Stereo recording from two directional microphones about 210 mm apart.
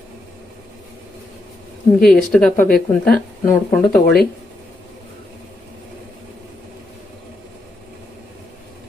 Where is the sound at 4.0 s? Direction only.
45° left (ahead or behind).